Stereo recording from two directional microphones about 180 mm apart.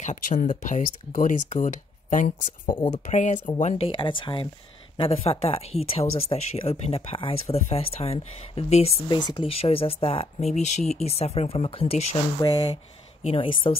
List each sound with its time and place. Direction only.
0.0 s speech: 45° left (ahead or behind)
2.6 s speech: 30° left (ahead or behind)
3.1 s speech: 40° left (ahead or behind)